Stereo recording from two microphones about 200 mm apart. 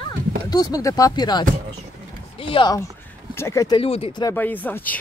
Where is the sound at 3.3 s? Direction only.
15° left (ahead or behind).